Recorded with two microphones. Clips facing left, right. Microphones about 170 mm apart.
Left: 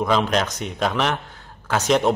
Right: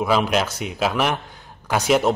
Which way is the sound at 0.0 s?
10° right (ahead or behind).